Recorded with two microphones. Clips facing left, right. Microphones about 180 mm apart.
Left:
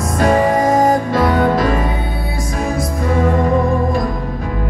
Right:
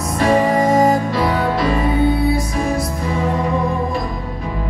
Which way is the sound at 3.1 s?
50° left (ahead or behind).